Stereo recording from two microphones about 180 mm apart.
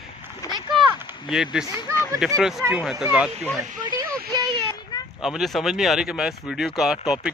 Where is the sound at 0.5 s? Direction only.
25° right (ahead or behind).